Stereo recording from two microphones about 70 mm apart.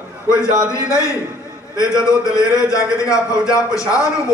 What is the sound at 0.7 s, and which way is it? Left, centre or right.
Speech, left.